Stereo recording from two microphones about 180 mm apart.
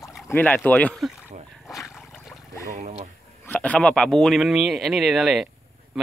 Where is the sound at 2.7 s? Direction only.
40° right (ahead or behind).